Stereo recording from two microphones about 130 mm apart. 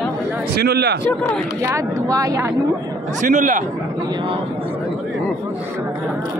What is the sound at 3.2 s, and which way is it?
Speech, 75° right (ahead or behind).